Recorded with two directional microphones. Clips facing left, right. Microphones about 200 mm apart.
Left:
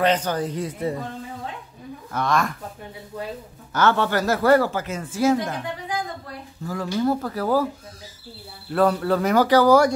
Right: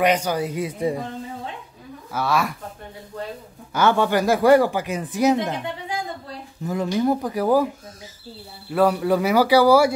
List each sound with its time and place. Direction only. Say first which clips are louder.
0.0 s speech: right 1 dB; 10° right (ahead or behind)
2.1 s speech: even; 5° right (ahead or behind)
3.7 s speech: right 2 dB; 10° right (ahead or behind)
8.7 s speech: right 1 dB; 10° right (ahead or behind)